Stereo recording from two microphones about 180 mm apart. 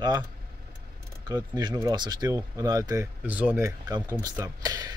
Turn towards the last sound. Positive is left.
turn(degrees=-20)  # may be behind; listen again after turning